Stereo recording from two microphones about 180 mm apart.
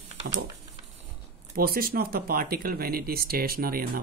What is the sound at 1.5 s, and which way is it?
Speech, 55° right (ahead or behind).